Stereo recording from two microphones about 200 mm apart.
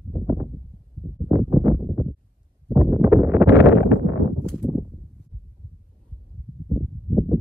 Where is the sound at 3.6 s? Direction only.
55° left (ahead or behind).